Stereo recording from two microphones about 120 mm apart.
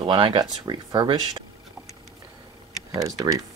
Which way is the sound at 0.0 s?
45° right (ahead or behind).